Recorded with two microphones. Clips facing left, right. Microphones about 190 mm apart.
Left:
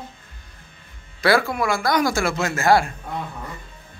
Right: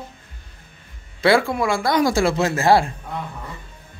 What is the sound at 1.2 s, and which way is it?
Speech, 25° right (ahead or behind).